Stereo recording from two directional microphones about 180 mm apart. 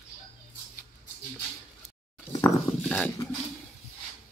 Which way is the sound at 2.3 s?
15° left (ahead or behind).